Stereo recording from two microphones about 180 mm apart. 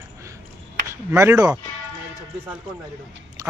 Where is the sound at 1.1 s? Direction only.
20° right (ahead or behind).